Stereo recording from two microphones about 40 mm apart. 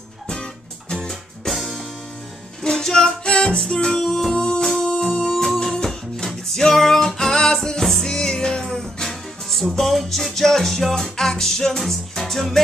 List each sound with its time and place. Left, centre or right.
0.3 s music: left
1.4 s music: centre
2.6 s music: centre
4.4 s music: left
4.7 s a sound: centre
5.1 s music: centre